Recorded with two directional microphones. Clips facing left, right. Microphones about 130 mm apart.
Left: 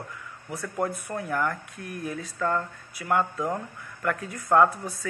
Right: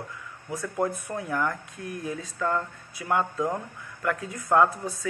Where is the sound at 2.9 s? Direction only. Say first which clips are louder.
Left 1 dB; 20° right (ahead or behind).